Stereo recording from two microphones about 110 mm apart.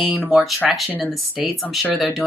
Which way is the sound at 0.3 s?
Centre (ahead or behind).